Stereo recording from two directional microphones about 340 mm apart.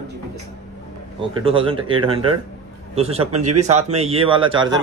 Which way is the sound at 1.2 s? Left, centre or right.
Centre.